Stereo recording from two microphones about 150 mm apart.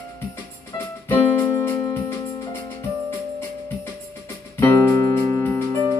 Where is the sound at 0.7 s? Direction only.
15° left (ahead or behind).